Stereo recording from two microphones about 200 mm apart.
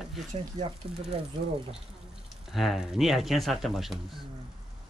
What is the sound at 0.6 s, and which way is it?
Speech, 35° right (ahead or behind).